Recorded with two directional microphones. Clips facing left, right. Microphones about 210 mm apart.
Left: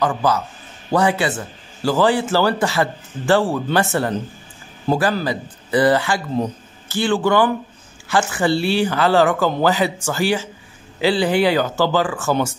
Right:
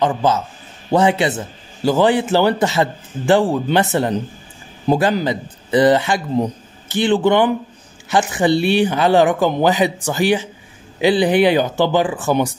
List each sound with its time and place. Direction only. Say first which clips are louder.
0.0 s speech: right 2 dB; 25° right (ahead or behind)